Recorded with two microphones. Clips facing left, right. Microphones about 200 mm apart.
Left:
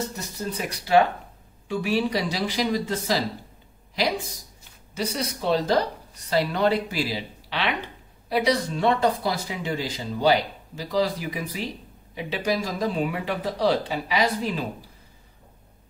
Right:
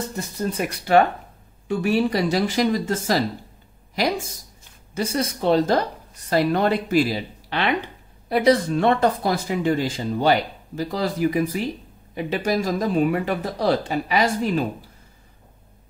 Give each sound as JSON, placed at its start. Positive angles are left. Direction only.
{"t": 0.1, "sound": "speech", "side_deg": -55}
{"t": 4.9, "sound": "speech", "side_deg": -50}